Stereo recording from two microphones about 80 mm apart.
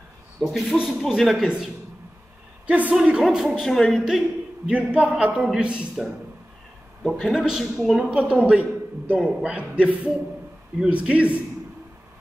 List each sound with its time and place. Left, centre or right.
0.4 s a woman's voice: centre
2.6 s a woman's voice: centre
4.6 s a man's voice: centre
5.2 s a man's voice: centre
7.0 s speech: centre
7.2 s a man's voice: centre
8.1 s a man's voice: centre